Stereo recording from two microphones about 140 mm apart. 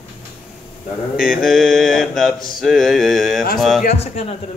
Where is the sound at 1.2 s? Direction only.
5° right (ahead or behind).